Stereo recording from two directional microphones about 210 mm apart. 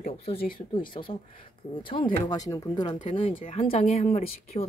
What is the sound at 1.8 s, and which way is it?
A woman's voice, 25° left (ahead or behind).